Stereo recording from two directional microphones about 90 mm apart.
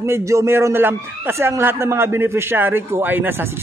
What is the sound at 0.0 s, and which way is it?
A man's voice, 35° right (ahead or behind).